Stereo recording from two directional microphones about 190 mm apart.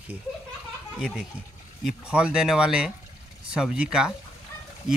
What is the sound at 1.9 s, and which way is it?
Speech, 5° right (ahead or behind).